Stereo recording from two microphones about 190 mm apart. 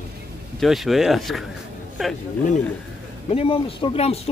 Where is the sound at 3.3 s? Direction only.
30° left (ahead or behind).